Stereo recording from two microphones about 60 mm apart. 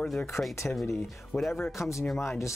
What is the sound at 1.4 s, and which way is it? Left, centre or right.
Speech, centre.